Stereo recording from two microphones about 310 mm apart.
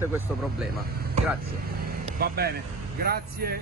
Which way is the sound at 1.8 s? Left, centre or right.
Right.